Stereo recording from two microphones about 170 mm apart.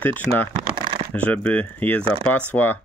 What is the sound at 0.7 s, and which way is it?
Shuffling cards, 30° right (ahead or behind).